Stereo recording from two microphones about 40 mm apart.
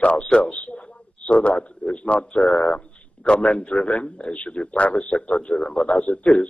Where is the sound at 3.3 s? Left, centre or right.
Left.